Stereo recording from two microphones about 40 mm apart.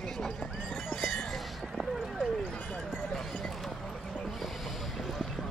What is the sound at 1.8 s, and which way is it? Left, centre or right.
Horse, centre.